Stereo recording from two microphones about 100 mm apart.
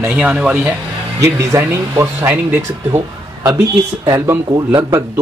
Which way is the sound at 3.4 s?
30° right (ahead or behind).